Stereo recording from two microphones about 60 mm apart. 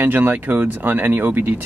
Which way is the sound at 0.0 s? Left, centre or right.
Right.